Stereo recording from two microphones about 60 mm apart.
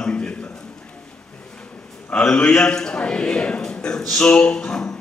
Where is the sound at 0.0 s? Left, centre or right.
Centre.